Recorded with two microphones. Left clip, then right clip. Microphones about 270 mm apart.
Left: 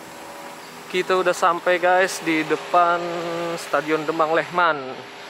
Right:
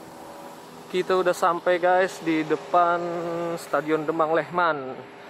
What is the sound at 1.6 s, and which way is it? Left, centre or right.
Insect, centre.